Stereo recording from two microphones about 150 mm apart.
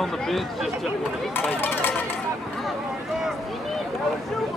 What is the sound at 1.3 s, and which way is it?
Run, 15° left (ahead or behind).